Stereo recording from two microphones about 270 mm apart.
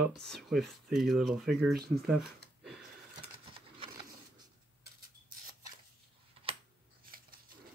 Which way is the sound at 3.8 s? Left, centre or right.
Centre.